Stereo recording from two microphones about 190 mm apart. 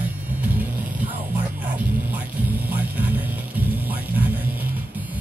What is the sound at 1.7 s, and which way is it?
Music, 10° right (ahead or behind).